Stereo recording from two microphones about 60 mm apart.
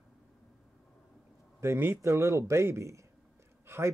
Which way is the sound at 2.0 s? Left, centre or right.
Right.